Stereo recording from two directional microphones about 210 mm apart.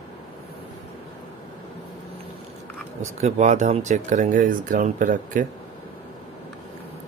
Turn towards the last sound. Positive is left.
turn(degrees=-40)  # may be behind; listen again after turning